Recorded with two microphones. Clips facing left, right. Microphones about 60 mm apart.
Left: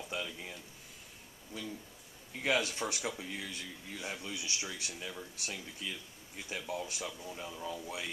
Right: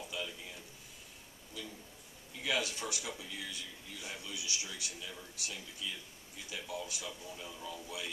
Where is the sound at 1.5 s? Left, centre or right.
Left.